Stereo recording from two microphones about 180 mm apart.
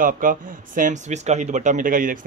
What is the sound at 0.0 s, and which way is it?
Speech, 50° right (ahead or behind).